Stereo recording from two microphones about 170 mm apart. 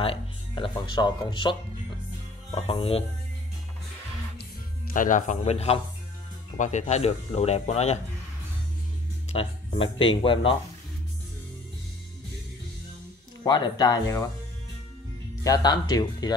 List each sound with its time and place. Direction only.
0.0 s speech: 30° left (ahead or behind)
4.9 s speech: 50° left (ahead or behind)
9.3 s speech: 30° left (ahead or behind)
13.4 s speech: 25° left (ahead or behind)
15.4 s speech: 25° left (ahead or behind)